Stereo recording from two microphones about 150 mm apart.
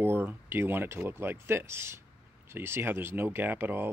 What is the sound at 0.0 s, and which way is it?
Speech, 15° right (ahead or behind).